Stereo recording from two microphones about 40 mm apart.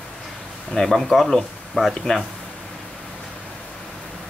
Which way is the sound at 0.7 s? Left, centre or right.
Centre.